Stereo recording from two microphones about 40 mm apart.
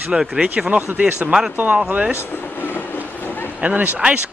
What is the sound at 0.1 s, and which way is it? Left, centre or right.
Speech, centre.